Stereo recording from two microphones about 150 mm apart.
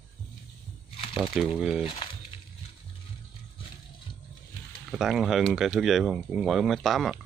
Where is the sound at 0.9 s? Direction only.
40° left (ahead or behind).